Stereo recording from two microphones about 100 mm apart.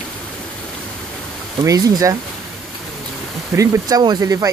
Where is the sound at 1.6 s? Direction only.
40° right (ahead or behind).